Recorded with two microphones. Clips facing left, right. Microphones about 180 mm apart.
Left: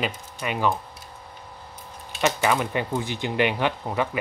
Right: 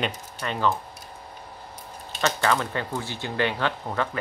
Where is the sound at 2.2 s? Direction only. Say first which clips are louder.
Left 2 dB; 15° left (ahead or behind).